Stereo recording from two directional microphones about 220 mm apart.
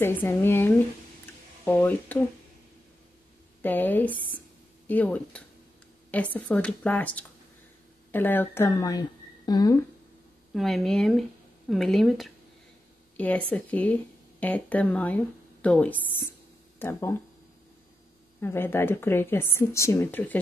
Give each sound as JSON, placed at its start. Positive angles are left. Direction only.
{"t": 0.0, "sound": "a woman's voice", "side_deg": 10}
{"t": 3.6, "sound": "a woman's voice", "side_deg": 10}
{"t": 10.5, "sound": "a woman's voice", "side_deg": 0}
{"t": 13.5, "sound": "a woman's voice", "side_deg": 5}
{"t": 18.4, "sound": "a woman's voice", "side_deg": 10}